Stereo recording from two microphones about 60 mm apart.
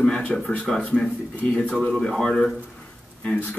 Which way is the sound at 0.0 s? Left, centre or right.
Centre.